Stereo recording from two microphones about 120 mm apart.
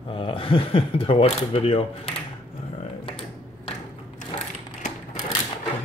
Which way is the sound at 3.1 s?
55° left (ahead or behind).